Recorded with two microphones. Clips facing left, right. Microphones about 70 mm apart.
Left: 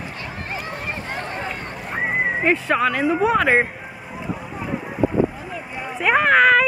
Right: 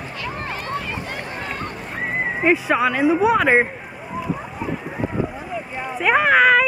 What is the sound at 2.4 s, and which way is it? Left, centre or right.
Speech, centre.